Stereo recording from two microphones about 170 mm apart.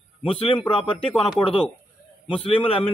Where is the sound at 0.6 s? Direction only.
30° left (ahead or behind).